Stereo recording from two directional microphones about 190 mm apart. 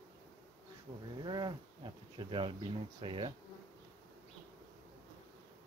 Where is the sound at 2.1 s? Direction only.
25° right (ahead or behind).